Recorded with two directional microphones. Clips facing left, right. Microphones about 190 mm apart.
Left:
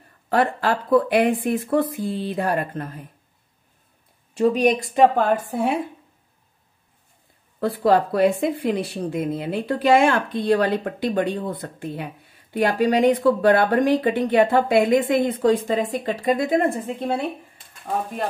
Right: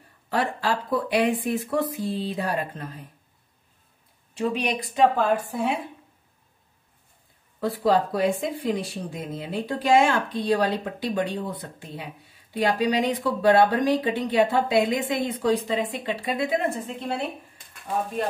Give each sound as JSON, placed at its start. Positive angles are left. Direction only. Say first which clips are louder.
{"t": 0.3, "sound": "speech", "louder": "left 5 dB", "side_deg": 55}
{"t": 4.4, "sound": "speech", "louder": "left 8 dB", "side_deg": 45}
{"t": 7.6, "sound": "speech", "louder": "left 3 dB", "side_deg": 60}